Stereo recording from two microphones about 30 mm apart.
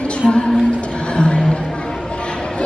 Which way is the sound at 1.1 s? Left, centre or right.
Left.